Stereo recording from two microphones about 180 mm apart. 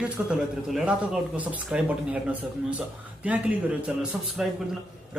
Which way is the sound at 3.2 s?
5° right (ahead or behind).